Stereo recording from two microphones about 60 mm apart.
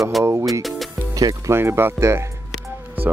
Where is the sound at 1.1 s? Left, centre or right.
Right.